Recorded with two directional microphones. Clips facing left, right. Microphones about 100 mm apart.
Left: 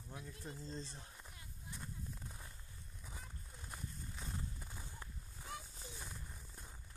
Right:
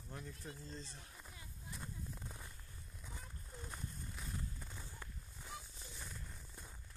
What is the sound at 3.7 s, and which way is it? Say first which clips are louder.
Horse: left 2 dB; 5° left (ahead or behind).